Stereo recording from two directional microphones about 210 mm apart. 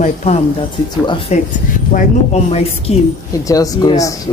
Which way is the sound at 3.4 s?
15° left (ahead or behind).